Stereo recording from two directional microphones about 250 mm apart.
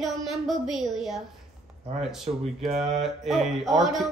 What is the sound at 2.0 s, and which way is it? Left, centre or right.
Speech, centre.